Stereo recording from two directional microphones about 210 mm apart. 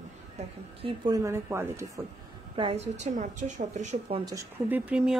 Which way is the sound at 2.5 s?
30° right (ahead or behind).